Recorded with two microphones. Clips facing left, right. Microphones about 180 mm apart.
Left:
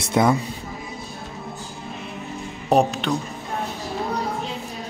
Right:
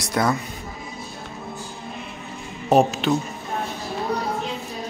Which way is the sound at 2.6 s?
Centre (ahead or behind).